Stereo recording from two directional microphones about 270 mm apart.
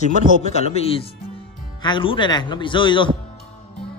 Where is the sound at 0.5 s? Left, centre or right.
Left.